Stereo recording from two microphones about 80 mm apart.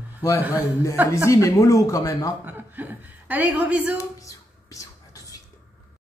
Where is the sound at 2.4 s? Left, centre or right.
Right.